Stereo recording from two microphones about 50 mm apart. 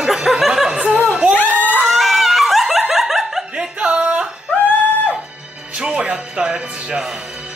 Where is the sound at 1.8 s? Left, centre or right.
Centre.